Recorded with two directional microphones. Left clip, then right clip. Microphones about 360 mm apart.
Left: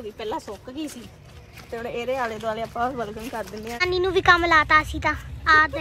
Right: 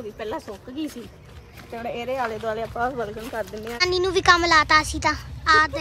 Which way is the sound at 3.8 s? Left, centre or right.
Centre.